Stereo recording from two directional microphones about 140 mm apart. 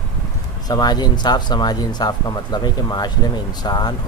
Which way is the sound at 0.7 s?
30° left (ahead or behind).